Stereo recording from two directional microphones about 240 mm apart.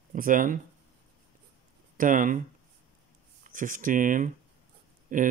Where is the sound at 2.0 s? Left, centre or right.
Right.